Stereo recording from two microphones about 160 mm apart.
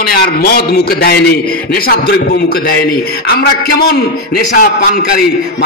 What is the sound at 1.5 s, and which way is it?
A man's voice, 70° left (ahead or behind).